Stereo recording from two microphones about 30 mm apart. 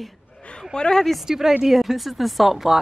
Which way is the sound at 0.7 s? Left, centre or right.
Left.